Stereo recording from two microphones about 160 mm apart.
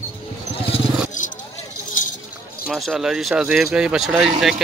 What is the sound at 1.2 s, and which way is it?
Vehicle, 55° left (ahead or behind).